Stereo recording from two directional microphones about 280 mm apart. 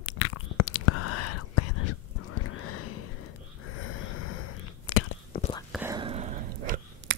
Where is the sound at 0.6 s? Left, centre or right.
Left.